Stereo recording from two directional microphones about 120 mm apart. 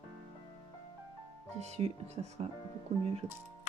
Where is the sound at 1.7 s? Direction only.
60° right (ahead or behind).